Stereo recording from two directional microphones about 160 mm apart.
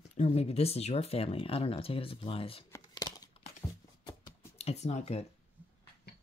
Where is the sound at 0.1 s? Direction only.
40° left (ahead or behind).